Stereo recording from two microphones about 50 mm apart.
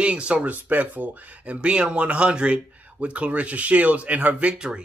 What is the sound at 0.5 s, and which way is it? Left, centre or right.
Speech, right.